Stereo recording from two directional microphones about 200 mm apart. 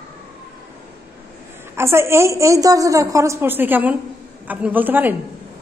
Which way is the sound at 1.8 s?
15° right (ahead or behind).